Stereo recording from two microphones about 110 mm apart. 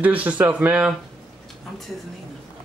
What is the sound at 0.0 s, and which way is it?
Speech, 15° right (ahead or behind).